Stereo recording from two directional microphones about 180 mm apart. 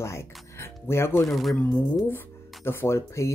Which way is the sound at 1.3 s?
Centre (ahead or behind).